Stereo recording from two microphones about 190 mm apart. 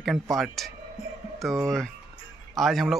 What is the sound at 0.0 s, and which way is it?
Speech, centre (ahead or behind).